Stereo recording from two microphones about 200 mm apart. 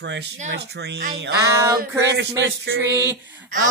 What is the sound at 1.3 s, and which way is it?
Speech, 15° right (ahead or behind).